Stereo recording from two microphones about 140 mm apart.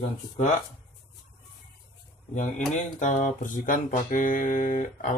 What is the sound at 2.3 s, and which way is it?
Speech, 65° left (ahead or behind).